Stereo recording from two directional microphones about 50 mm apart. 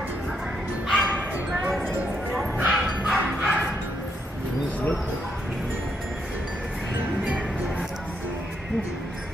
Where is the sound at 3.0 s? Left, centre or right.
Right.